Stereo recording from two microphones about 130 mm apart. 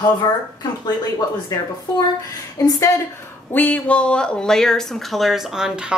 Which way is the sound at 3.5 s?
15° left (ahead or behind).